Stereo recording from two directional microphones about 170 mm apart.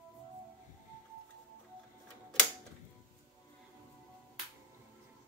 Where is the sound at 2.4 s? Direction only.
5° left (ahead or behind).